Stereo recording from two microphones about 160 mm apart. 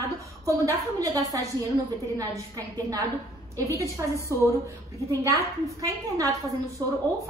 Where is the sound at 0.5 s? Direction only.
20° right (ahead or behind).